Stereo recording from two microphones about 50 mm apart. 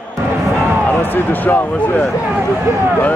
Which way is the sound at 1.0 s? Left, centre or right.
Left.